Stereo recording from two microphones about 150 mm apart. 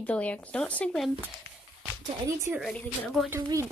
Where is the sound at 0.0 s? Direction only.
10° left (ahead or behind).